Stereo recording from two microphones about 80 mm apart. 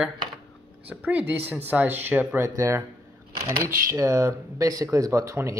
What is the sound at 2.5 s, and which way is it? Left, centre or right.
Speech, right.